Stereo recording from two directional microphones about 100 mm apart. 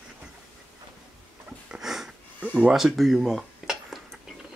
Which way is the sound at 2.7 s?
5° right (ahead or behind).